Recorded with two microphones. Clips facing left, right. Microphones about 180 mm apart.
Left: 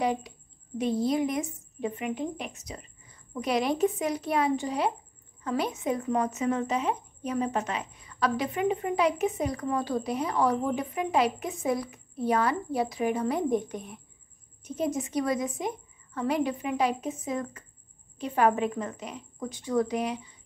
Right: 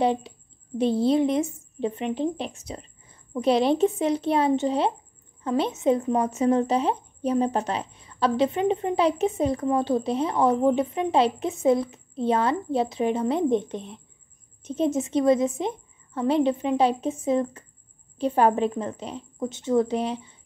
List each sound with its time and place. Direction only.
0.0 s speech: 30° right (ahead or behind)